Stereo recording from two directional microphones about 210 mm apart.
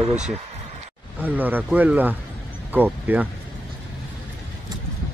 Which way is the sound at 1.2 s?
10° right (ahead or behind).